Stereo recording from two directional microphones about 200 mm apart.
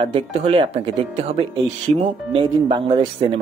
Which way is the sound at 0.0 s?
30° right (ahead or behind).